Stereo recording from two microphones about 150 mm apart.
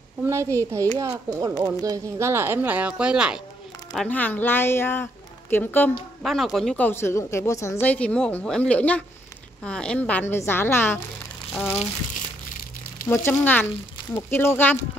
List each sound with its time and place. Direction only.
0.3 s speech: 20° right (ahead or behind)
3.9 s speech: 5° left (ahead or behind)
6.2 s speech: centre (ahead or behind)
6.9 s speech: 15° left (ahead or behind)
13.1 s speech: 15° left (ahead or behind)